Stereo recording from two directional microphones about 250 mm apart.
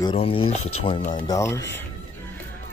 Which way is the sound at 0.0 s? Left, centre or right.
Left.